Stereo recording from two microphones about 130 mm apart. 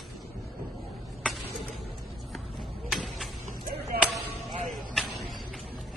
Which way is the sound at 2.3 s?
Centre (ahead or behind).